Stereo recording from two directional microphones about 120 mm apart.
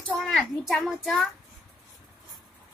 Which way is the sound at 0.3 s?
Centre (ahead or behind).